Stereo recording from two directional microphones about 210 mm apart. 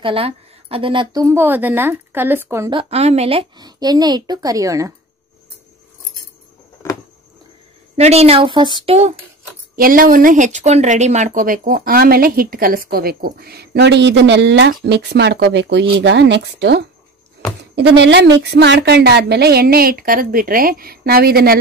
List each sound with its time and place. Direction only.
0.0 s a woman's voice: 25° right (ahead or behind)
2.7 s speech: 25° right (ahead or behind)
6.8 s a sound: 15° left (ahead or behind)
7.9 s speech: 30° right (ahead or behind)
9.8 s speech: 45° right (ahead or behind)